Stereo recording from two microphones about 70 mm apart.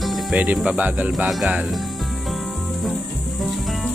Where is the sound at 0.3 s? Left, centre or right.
Right.